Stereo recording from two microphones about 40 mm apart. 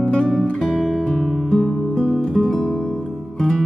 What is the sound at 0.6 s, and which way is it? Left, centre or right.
Music, centre.